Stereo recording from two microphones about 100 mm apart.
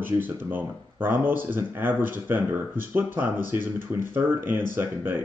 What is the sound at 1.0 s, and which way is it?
Speech, 20° right (ahead or behind).